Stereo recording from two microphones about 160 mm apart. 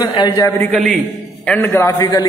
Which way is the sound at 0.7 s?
5° left (ahead or behind).